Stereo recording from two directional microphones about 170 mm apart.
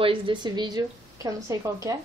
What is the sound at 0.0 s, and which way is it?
A woman's voice, 30° right (ahead or behind).